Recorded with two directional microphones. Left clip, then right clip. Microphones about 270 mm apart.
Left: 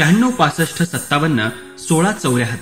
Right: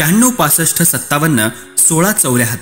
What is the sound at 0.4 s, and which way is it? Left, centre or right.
A man's voice, right.